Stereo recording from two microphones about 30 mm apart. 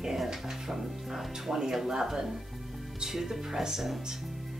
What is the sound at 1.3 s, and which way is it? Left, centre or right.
Speech, centre.